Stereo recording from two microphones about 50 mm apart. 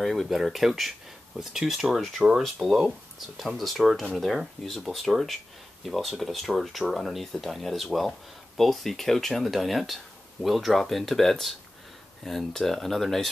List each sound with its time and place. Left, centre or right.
0.0 s speech: centre